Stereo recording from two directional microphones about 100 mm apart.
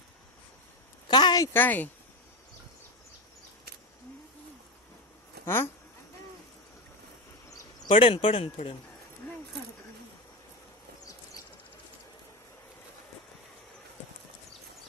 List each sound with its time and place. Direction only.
1.0 s a sound: 45° left (ahead or behind)
1.5 s speech: 20° left (ahead or behind)
5.4 s speech: 25° left (ahead or behind)
7.9 s speech: 65° left (ahead or behind)